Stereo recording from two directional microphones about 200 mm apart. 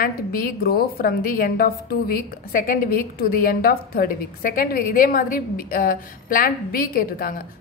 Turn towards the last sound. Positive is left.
turn(degrees=45)  # may be behind; listen again after turning